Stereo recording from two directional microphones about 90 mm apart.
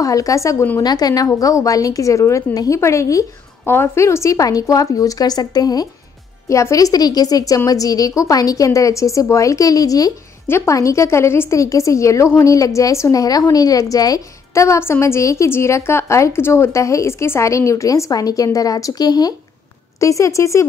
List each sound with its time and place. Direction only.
0.0 s a woman's voice: 40° left (ahead or behind)
0.7 s a woman's voice: 45° left (ahead or behind)
6.5 s a woman's voice: 35° left (ahead or behind)
10.4 s a woman's voice: 30° left (ahead or behind); by 19.3 s 50° left (ahead or behind)
20.0 s a woman's voice: 35° left (ahead or behind)